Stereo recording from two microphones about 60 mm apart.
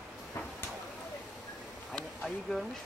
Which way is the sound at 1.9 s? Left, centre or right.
Centre.